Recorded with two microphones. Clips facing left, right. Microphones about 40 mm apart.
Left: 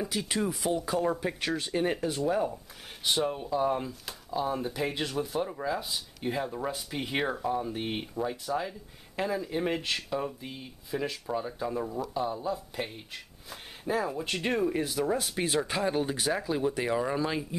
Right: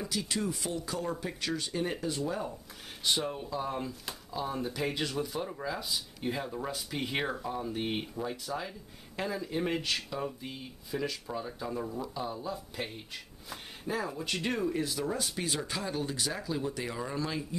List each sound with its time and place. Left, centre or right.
0.1 s speech: left
15.3 s speech: left